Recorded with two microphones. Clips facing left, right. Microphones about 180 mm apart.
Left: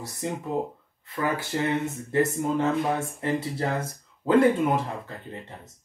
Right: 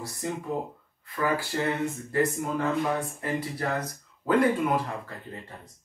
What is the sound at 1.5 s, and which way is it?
Speech, 20° left (ahead or behind).